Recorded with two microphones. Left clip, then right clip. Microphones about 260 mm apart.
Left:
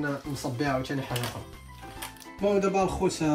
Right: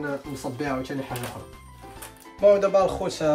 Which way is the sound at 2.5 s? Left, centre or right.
Centre.